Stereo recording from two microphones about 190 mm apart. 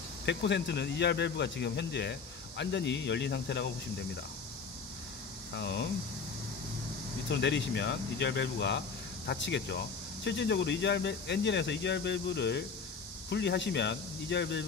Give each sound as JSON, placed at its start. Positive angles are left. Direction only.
{"t": 0.2, "sound": "speech", "side_deg": 65}
{"t": 5.5, "sound": "speech", "side_deg": 65}
{"t": 7.2, "sound": "speech", "side_deg": 65}